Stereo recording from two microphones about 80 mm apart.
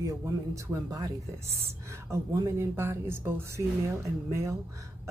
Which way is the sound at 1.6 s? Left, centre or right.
Right.